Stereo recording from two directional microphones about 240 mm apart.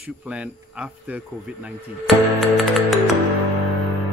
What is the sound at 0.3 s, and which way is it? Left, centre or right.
Speech, centre.